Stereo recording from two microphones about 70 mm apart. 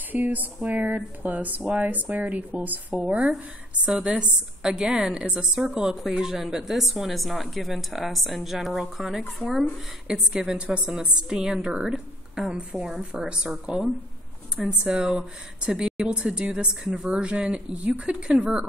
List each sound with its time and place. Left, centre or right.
0.1 s a woman's voice: right